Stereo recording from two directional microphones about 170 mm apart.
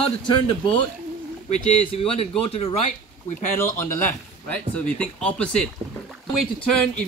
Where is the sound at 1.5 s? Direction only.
40° left (ahead or behind).